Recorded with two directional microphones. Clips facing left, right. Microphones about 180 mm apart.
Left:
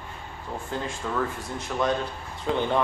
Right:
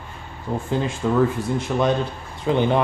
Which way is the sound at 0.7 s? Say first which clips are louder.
Right 9 dB; 20° right (ahead or behind).